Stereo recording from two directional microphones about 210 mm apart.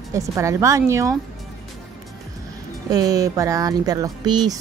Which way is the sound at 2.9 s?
15° right (ahead or behind).